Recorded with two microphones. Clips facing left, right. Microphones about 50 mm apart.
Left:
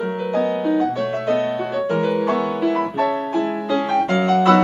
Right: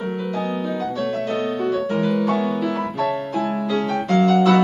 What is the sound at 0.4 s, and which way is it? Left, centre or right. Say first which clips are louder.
Music: left 8 dB; left.